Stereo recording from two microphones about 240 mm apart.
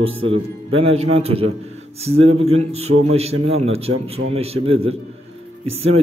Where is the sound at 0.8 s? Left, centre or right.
Right.